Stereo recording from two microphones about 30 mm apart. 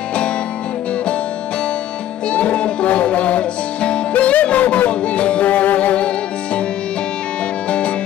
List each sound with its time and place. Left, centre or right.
2.2 s music: left
4.1 s music: left
5.0 s music: left
5.5 s music: left